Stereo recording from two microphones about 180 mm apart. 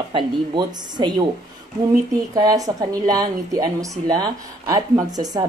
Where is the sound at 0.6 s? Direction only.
25° right (ahead or behind).